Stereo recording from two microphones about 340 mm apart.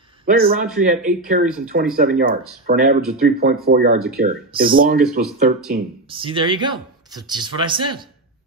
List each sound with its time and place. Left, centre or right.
0.2 s a man's voice: right
6.1 s speech: centre